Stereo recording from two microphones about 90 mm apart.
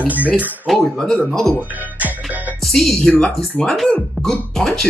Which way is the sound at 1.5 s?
20° right (ahead or behind).